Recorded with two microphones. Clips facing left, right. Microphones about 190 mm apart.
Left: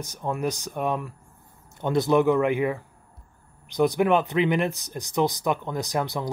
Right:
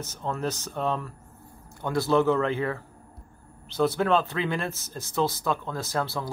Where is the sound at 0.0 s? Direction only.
15° left (ahead or behind).